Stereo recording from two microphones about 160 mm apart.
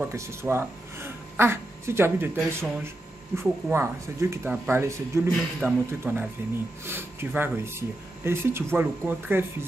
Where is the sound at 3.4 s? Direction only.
15° right (ahead or behind).